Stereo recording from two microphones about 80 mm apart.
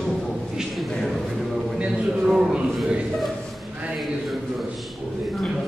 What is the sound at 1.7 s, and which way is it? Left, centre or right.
Speech, centre.